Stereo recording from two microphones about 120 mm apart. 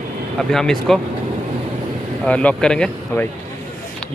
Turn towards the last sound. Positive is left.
turn(degrees=5)  # may be behind; listen again after turning